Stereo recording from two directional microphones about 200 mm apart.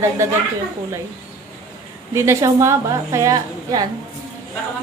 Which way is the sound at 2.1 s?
15° right (ahead or behind).